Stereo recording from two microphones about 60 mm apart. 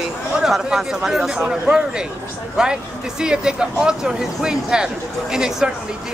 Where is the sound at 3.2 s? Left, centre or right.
Centre.